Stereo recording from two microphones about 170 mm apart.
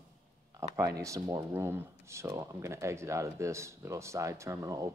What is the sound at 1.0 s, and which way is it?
Speech, 20° right (ahead or behind).